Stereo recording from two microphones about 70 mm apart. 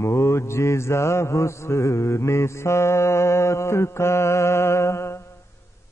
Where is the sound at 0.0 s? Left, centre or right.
Left.